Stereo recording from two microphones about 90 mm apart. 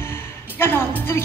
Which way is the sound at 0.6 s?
25° left (ahead or behind).